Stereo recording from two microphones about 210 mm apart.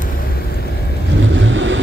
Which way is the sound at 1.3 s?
60° right (ahead or behind).